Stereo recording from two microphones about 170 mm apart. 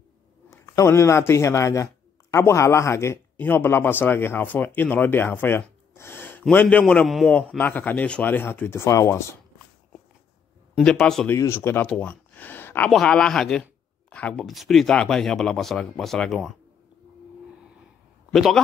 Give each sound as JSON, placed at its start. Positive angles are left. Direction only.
{"t": 0.5, "sound": "speech", "side_deg": 15}
{"t": 10.7, "sound": "speech", "side_deg": 5}
{"t": 11.3, "sound": "speech", "side_deg": 15}
{"t": 18.3, "sound": "a man's voice", "side_deg": 0}